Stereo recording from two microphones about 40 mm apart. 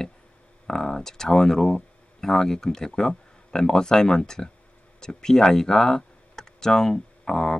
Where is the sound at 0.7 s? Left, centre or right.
Centre.